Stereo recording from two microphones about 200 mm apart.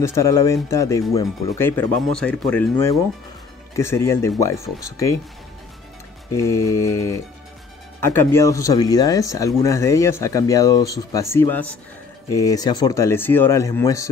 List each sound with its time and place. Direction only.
0.0 s speech: 15° left (ahead or behind)
6.3 s speech: 15° left (ahead or behind)